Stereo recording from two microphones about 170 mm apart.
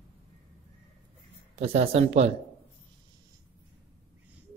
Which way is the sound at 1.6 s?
35° right (ahead or behind).